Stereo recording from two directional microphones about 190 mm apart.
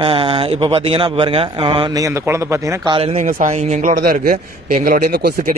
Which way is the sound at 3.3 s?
45° right (ahead or behind).